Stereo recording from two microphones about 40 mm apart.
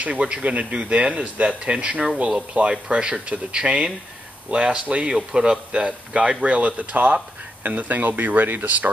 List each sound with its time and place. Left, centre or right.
0.1 s speech: right
8.6 s speech: right